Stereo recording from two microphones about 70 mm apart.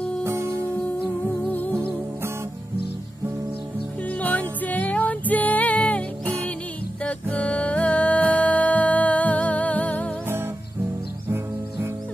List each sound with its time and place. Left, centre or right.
0.2 s music: right
4.2 s music: left
11.2 s music: right